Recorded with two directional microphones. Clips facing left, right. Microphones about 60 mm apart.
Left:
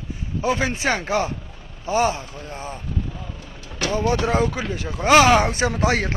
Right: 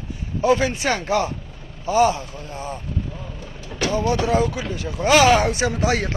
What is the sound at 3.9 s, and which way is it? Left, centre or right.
Speech, left.